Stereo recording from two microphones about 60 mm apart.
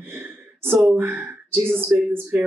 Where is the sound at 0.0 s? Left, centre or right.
Right.